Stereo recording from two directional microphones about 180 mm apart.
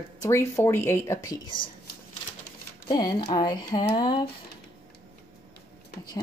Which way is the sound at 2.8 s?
20° left (ahead or behind).